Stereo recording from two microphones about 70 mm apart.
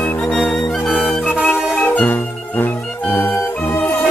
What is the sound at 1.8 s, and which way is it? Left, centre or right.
Music, left.